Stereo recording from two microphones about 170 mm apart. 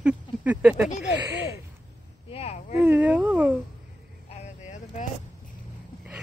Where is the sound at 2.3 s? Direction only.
40° left (ahead or behind).